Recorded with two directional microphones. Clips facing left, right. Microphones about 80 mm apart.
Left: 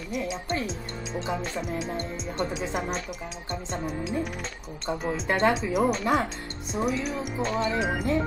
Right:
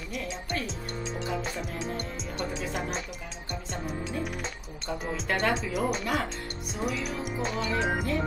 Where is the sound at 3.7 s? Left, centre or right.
Centre.